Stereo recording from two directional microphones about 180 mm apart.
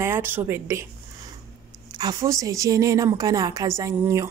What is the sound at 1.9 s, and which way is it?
A woman's voice, 20° right (ahead or behind).